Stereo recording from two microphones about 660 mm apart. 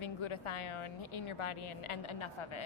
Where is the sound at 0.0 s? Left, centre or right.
Left.